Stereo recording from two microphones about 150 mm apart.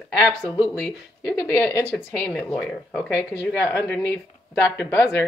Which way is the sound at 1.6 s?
20° left (ahead or behind).